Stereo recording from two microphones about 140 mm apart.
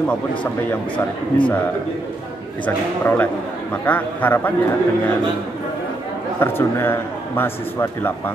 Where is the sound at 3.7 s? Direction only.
10° left (ahead or behind).